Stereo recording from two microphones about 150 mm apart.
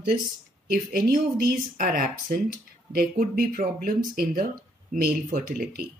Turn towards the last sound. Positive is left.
turn(degrees=-80)